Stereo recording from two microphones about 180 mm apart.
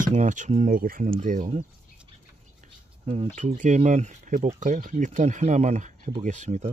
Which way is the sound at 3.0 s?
35° right (ahead or behind).